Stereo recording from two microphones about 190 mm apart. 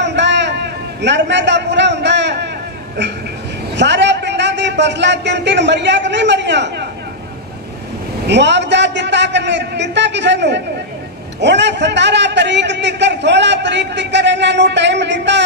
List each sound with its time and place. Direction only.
0.0 s a sound: 65° right (ahead or behind)
3.7 s a man's voice: 65° right (ahead or behind)
8.3 s a man's voice: 65° right (ahead or behind)